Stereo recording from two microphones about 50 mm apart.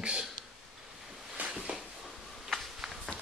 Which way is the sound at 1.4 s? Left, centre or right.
Right.